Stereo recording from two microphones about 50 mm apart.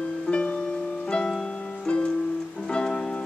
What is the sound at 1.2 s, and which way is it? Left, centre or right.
Music, centre.